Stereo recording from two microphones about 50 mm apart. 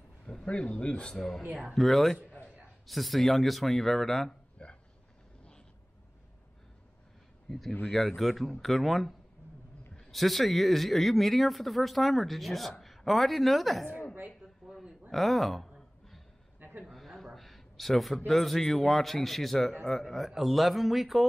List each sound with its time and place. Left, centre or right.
0.5 s speech: left
1.1 s speech: centre
4.6 s a sound: left
7.4 s speech: centre
10.1 s a woman's voice: centre
14.7 s a sound: centre
15.0 s speech: centre
16.5 s a sound: right
16.8 s a man's voice: centre